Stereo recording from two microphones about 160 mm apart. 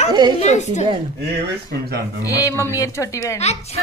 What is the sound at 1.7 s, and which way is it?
Speech, 90° right.